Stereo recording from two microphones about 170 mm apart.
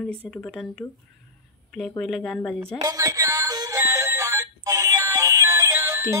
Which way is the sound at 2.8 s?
20° right (ahead or behind).